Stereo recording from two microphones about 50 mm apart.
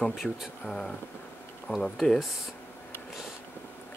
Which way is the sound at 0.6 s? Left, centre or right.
Centre.